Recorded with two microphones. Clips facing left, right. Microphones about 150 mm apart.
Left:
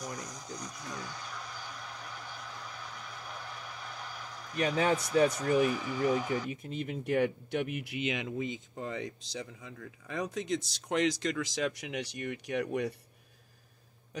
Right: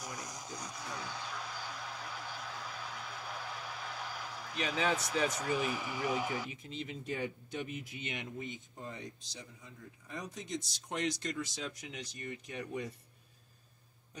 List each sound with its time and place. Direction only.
0.2 s vehicle: 10° right (ahead or behind)
4.6 s speech: 45° left (ahead or behind)
5.7 s speech: 10° right (ahead or behind)
6.5 s speech: 55° left (ahead or behind); by 12.9 s 70° left (ahead or behind)